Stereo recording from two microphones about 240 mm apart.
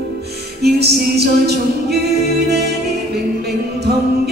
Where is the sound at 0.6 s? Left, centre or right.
Right.